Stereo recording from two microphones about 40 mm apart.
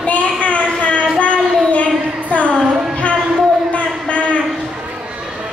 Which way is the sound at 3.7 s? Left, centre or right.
Left.